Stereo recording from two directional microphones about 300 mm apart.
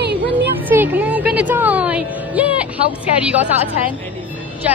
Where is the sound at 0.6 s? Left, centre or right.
Centre.